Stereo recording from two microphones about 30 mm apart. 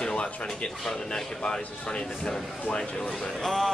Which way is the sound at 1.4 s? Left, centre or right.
Left.